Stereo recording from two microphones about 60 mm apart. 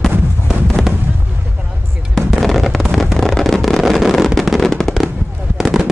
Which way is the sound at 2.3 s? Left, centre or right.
Centre.